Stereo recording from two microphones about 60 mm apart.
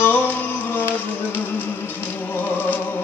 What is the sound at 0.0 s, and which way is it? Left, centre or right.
Music, left.